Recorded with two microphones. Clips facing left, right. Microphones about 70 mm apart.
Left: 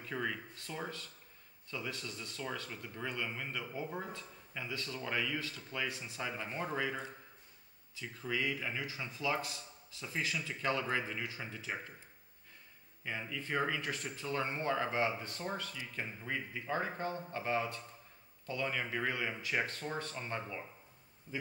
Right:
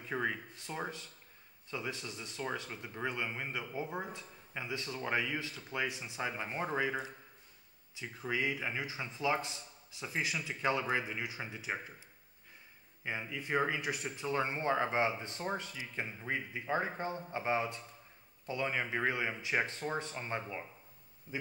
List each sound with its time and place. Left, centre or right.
0.0 s speech: right
13.0 s speech: centre